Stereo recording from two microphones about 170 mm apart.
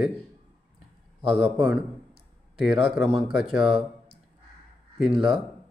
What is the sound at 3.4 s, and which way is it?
Speech, 5° right (ahead or behind).